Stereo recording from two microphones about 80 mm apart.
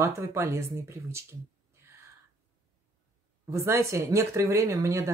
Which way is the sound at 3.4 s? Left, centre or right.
Right.